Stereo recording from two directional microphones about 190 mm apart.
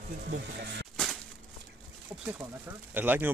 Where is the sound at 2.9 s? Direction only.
10° right (ahead or behind).